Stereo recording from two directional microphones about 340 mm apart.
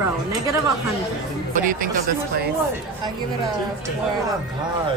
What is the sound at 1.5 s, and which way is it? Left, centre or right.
Speech, right.